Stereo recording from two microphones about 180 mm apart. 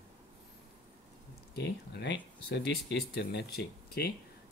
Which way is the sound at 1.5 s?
70° left (ahead or behind).